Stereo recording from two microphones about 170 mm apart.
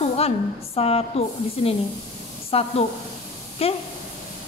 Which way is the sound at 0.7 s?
35° left (ahead or behind).